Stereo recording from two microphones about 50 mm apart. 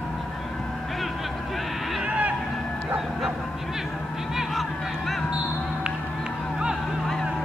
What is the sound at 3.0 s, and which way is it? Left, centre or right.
Bow-wow, centre.